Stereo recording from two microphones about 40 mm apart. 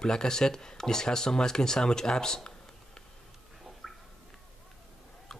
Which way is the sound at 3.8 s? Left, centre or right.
Centre.